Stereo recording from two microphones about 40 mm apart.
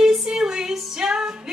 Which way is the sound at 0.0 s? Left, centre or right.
Centre.